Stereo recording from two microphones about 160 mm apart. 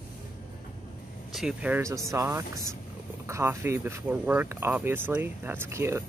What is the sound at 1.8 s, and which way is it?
Speech, 20° right (ahead or behind).